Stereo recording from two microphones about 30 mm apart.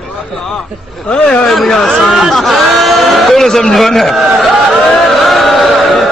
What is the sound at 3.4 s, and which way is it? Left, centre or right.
Speech, centre.